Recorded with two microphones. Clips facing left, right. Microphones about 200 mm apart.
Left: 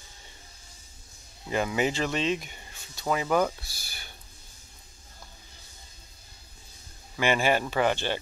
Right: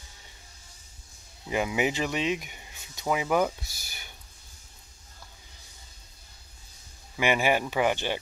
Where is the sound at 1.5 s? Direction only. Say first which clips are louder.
Even; 15° right (ahead or behind).